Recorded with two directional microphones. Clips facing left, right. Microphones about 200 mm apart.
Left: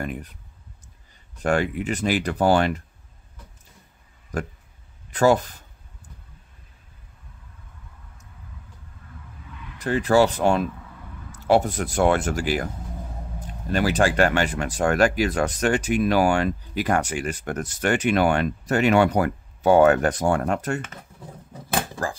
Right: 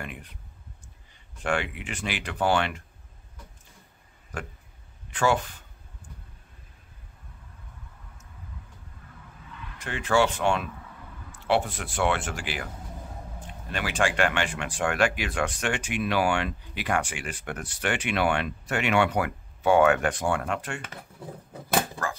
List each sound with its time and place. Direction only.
0.0 s speech: 40° left (ahead or behind)
4.3 s speech: 40° left (ahead or behind)
9.8 s speech: 40° left (ahead or behind)